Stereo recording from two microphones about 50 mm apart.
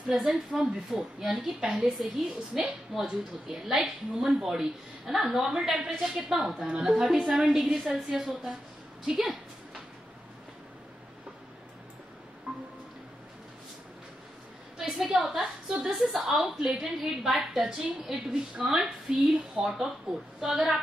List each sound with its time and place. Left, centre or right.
0.1 s a woman's voice: centre
6.3 s a woman's voice: centre
12.5 s a sound: right
14.8 s a woman's voice: centre